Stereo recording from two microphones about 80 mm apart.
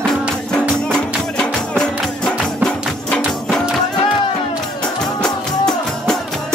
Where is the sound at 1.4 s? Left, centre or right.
Centre.